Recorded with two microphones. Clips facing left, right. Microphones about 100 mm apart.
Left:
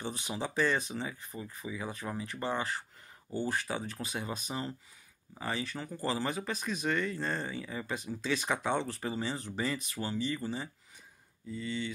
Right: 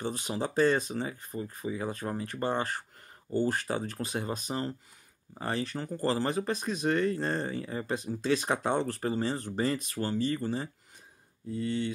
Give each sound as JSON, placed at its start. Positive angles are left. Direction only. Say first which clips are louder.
{"t": 0.0, "sound": "speech", "louder": "right 4 dB", "side_deg": -45}